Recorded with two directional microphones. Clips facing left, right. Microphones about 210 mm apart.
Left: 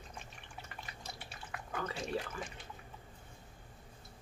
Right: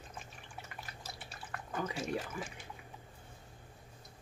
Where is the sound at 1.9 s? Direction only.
5° right (ahead or behind).